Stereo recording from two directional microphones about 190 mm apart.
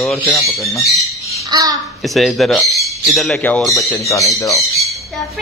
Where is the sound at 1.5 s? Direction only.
20° right (ahead or behind).